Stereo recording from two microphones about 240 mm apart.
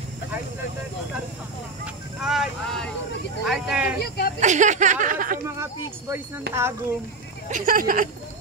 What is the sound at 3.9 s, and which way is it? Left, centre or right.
Speech, left.